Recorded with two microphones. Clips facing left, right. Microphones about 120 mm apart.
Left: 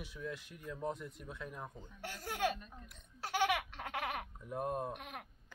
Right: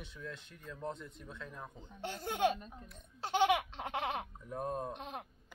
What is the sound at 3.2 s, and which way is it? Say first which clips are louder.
Baby laughter: right 4 dB; 25° right (ahead or behind).